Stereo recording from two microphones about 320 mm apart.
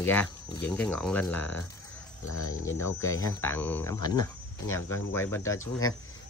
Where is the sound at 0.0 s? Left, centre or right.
Centre.